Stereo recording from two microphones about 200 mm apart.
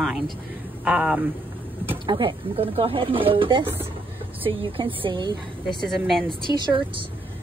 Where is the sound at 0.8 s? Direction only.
5° right (ahead or behind).